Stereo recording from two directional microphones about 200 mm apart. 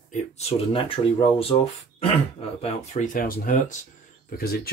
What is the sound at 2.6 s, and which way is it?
Speech, 35° left (ahead or behind).